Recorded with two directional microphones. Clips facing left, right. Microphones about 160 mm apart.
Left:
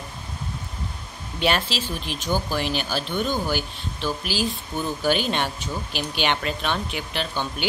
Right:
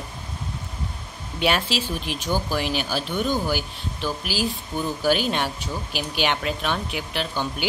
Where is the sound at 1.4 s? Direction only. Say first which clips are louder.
Right 1 dB; 10° right (ahead or behind).